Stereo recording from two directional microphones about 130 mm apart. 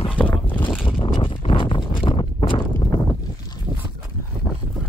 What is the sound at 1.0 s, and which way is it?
Horse, 40° left (ahead or behind).